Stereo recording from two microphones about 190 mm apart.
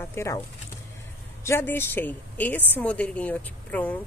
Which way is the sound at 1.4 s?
15° left (ahead or behind).